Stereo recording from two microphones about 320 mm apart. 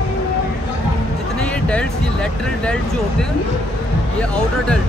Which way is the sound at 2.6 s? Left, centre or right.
Centre.